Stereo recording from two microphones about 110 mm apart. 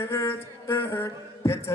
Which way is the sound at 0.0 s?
25° left (ahead or behind).